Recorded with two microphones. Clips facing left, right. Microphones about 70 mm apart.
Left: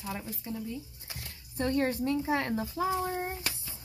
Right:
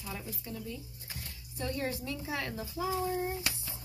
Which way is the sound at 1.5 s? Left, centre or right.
Left.